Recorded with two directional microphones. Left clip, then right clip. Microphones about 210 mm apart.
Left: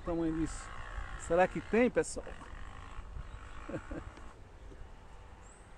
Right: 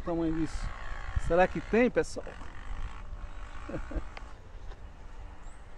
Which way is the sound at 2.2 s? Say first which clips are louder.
Right 3 dB; 35° right (ahead or behind).